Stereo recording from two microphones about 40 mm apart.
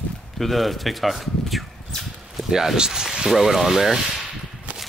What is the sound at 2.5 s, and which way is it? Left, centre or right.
Speech, centre.